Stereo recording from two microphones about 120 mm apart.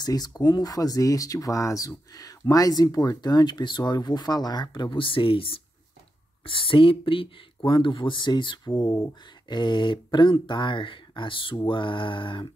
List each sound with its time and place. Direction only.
0.0 s speech: 35° left (ahead or behind)